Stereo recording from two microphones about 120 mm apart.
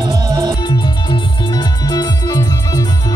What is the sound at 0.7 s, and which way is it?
Music, 40° left (ahead or behind).